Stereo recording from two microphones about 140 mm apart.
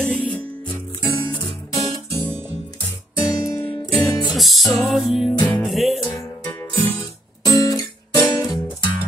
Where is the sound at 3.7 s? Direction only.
30° left (ahead or behind).